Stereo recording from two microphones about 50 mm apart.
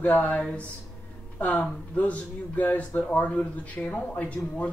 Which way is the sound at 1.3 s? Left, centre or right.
Left.